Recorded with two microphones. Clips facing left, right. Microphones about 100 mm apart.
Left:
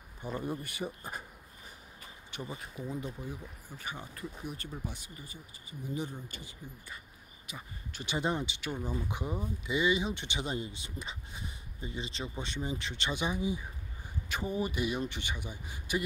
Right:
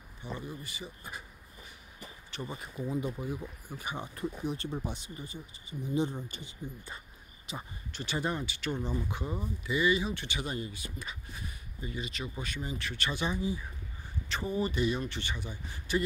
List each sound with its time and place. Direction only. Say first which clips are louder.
0.2 s speech: left 4 dB; 45° left (ahead or behind)
2.4 s speech: right 3 dB; centre (ahead or behind); by 7.6 s 30° right (ahead or behind)
7.9 s speech: left 1 dB; 15° left (ahead or behind)